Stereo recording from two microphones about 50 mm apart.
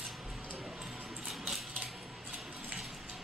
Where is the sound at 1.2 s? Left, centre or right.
Centre.